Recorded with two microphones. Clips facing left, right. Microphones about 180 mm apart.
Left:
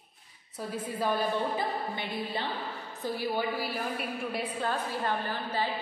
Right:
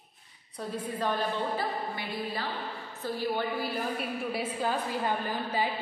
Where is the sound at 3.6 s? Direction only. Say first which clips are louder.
Right 1 dB; centre (ahead or behind).